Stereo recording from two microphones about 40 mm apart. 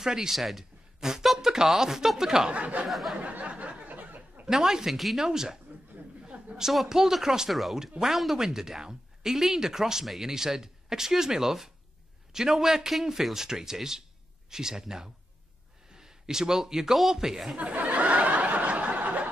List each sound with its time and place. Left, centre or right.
0.0 s speech: centre
0.4 s a man's voice: centre
1.0 s speech: centre
2.5 s speech: right
2.9 s a man's voice: centre
3.2 s a sound: right
3.8 s a sound: right
4.5 s speech: centre
4.9 s a man's voice: centre
5.2 s speech: centre
6.2 s a sound: centre
6.9 s speech: centre
17.6 s snicker: right